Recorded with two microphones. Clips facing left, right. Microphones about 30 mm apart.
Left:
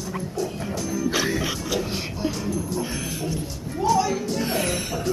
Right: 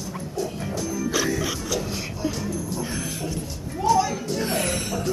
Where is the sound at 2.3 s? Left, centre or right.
Centre.